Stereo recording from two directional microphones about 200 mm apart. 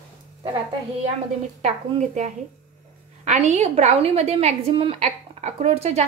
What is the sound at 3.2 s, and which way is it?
A woman's voice, 35° right (ahead or behind).